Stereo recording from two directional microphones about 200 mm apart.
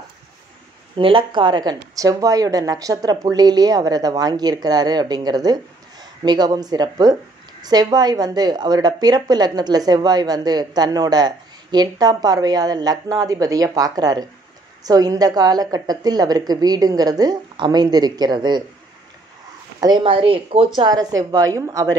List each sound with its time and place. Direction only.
0.9 s a woman's voice: 25° right (ahead or behind)
19.8 s a woman's voice: 25° right (ahead or behind)